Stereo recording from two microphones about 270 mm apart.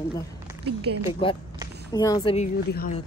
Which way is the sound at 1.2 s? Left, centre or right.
Centre.